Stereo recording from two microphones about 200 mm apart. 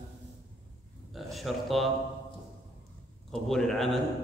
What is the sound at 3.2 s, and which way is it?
Speech, centre (ahead or behind).